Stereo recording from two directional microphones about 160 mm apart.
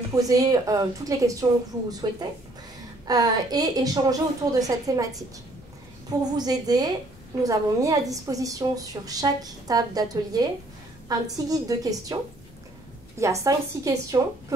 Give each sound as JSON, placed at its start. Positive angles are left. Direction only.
{"t": 0.1, "sound": "a woman's voice", "side_deg": -20}
{"t": 6.3, "sound": "a woman's voice", "side_deg": -25}
{"t": 13.2, "sound": "a woman's voice", "side_deg": -20}